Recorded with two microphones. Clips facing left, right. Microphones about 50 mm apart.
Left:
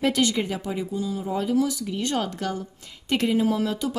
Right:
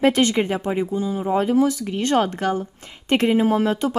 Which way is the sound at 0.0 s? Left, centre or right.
Right.